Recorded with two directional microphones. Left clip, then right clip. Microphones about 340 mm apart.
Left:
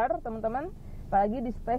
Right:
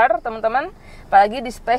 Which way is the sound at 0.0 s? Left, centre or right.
Centre.